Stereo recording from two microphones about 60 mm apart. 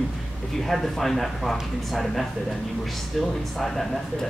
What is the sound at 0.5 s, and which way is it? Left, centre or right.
A man's voice, centre.